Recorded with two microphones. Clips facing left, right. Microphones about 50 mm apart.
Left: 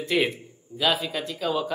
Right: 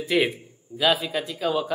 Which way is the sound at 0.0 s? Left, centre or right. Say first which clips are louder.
Right 2 dB; centre.